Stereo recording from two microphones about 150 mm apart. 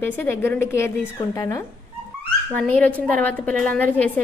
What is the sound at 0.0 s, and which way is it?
A woman's voice, 15° left (ahead or behind).